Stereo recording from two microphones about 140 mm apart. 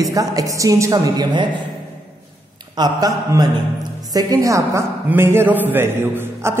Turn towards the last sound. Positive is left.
turn(degrees=-15)  # may be behind; listen again after turning